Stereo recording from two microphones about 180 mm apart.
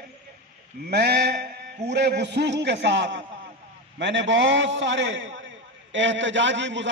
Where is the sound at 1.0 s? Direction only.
65° right (ahead or behind).